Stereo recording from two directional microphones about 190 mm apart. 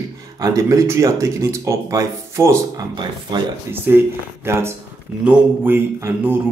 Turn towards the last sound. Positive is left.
turn(degrees=-10)  # may be behind; listen again after turning